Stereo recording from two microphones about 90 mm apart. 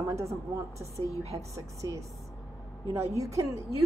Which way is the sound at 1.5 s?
35° right (ahead or behind).